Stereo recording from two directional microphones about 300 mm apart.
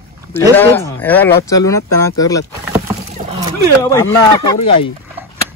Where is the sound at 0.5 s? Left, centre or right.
Centre.